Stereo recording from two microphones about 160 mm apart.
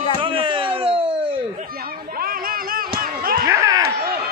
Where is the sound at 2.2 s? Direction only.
65° right (ahead or behind).